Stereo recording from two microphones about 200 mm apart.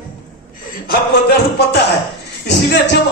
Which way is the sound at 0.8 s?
55° left (ahead or behind).